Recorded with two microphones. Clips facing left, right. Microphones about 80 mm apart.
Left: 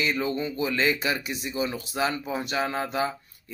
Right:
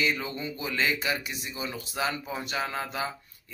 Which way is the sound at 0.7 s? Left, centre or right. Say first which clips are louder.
Left 1 dB; left.